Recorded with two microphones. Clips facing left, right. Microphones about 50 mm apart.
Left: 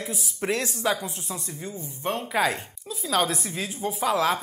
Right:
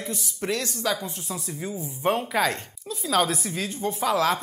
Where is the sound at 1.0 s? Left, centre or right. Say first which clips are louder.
Right 1 dB; centre.